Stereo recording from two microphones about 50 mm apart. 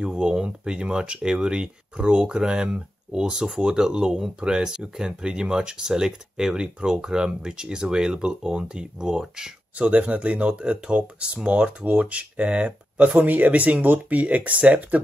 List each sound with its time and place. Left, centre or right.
0.0 s speech: centre
9.8 s speech: right